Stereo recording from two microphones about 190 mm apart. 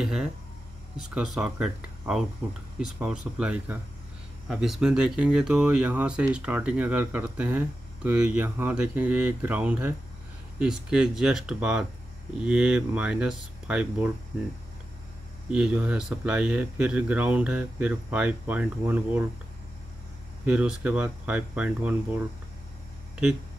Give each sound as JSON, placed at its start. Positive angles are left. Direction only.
{"t": 0.0, "sound": "speech", "side_deg": 0}
{"t": 15.5, "sound": "speech", "side_deg": -5}
{"t": 20.4, "sound": "speech", "side_deg": -5}